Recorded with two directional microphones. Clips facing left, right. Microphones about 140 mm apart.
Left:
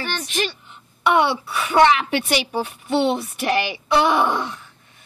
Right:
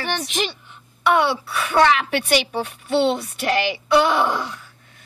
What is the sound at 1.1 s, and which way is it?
Speech, 15° left (ahead or behind).